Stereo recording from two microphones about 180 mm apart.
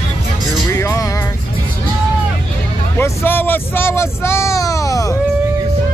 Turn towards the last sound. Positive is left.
turn(degrees=15)  # may be behind; listen again after turning